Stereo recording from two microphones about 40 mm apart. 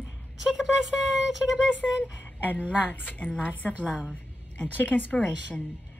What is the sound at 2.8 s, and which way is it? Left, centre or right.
A woman's voice, left.